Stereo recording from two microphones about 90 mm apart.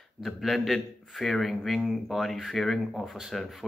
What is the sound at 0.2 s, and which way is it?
Speech, centre (ahead or behind).